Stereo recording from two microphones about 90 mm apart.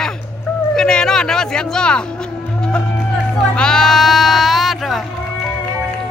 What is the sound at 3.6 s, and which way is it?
Sheep, 5° left (ahead or behind).